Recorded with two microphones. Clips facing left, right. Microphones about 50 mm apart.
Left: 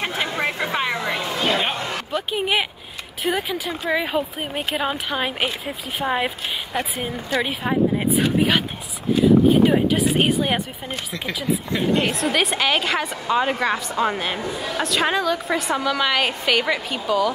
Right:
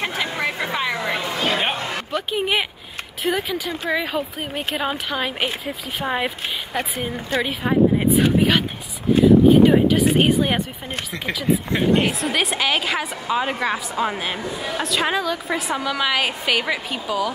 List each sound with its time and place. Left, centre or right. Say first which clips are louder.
0.2 s a sound: left 2 dB; centre
1.2 s a sound: left 1 dB; centre
2.3 s a woman's voice: even; centre
7.4 s a woman's voice: right 5 dB; centre
11.2 s speech: right 3 dB; right
12.0 s a woman's voice: even; centre